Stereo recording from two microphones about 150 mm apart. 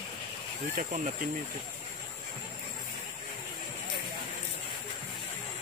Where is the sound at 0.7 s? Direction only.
55° right (ahead or behind).